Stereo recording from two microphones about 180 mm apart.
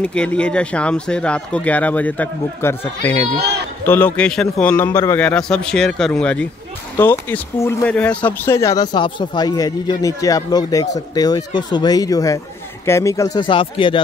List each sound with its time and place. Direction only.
0.0 s a man's voice: 5° left (ahead or behind); by 14.0 s 30° left (ahead or behind)